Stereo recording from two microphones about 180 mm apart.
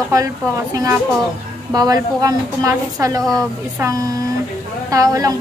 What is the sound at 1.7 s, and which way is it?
A woman's voice, 20° right (ahead or behind).